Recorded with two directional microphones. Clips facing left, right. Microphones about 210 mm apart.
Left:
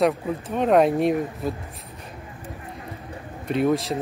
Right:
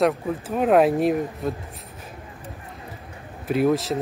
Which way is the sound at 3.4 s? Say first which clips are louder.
Right 1 dB; 5° right (ahead or behind).